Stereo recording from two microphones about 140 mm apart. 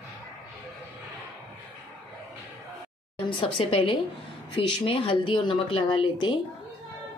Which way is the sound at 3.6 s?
40° left (ahead or behind).